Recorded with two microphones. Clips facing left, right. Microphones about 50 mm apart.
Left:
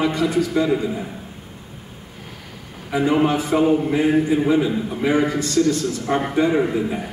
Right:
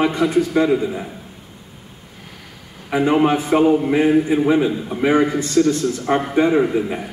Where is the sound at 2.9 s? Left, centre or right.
Right.